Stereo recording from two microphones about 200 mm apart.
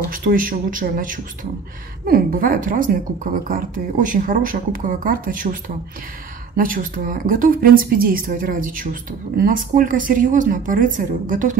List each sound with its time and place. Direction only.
0.1 s a woman's voice: 45° right (ahead or behind)